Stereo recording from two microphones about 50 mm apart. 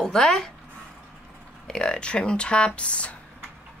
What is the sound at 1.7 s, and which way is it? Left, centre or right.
Speech, centre.